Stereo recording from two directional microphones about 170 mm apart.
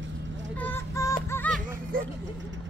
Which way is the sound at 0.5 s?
10° left (ahead or behind).